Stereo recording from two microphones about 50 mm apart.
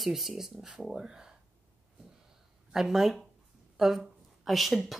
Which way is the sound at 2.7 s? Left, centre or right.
Centre.